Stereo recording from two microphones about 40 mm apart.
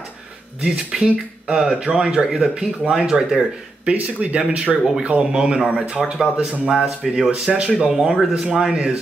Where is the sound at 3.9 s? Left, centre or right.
Right.